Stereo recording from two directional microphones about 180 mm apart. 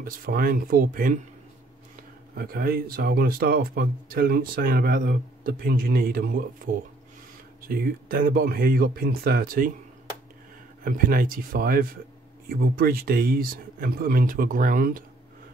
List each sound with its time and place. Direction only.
0.0 s speech: 55° right (ahead or behind)
2.3 s speech: 55° right (ahead or behind)
10.8 s speech: 55° right (ahead or behind)